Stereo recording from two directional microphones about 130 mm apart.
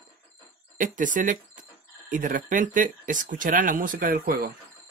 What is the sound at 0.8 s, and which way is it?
Speech, 90° right.